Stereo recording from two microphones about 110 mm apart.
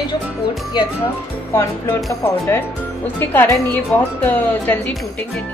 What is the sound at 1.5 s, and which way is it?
Speech, 25° left (ahead or behind).